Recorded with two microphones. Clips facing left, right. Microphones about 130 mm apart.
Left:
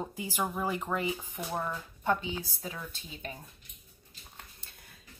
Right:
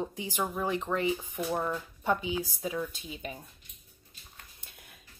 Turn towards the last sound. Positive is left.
turn(degrees=-10)  # may be behind; listen again after turning